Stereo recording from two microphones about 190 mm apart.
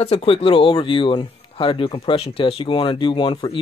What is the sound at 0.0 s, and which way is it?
Speech, 30° left (ahead or behind).